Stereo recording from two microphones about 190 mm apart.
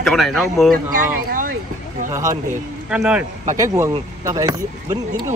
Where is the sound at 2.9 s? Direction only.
5° right (ahead or behind).